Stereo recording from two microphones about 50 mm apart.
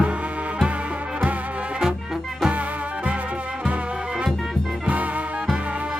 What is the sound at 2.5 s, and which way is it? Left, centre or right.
Music, right.